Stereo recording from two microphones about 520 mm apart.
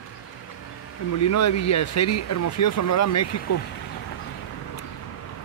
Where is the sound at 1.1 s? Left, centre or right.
Left.